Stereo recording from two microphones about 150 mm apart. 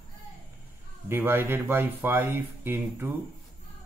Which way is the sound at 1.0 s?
15° right (ahead or behind).